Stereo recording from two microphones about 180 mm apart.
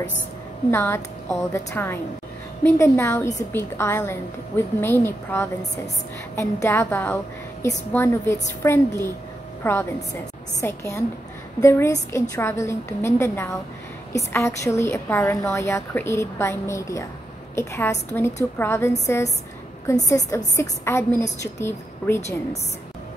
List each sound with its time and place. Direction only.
0.7 s a woman's voice: 15° left (ahead or behind)